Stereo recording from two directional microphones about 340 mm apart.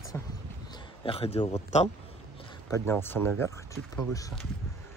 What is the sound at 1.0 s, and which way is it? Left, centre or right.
Speech, centre.